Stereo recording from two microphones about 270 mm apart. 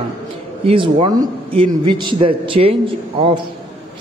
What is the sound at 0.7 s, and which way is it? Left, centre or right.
A man's voice, centre.